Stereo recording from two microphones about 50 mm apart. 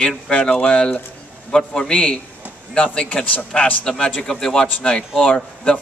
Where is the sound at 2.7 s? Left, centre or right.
Left.